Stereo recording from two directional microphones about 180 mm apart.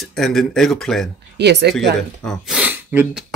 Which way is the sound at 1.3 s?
70° right (ahead or behind).